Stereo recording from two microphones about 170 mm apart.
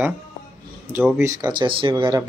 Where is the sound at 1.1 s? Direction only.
20° right (ahead or behind).